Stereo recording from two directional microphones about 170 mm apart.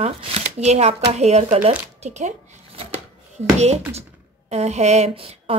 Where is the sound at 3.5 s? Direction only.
40° right (ahead or behind).